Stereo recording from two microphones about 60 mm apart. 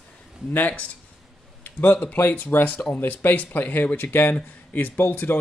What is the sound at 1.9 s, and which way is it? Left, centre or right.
Speech, left.